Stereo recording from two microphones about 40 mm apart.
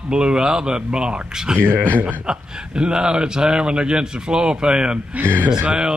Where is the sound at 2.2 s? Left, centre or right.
Centre.